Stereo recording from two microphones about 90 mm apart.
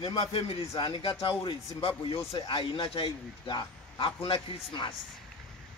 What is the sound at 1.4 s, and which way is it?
Speech, 90° left.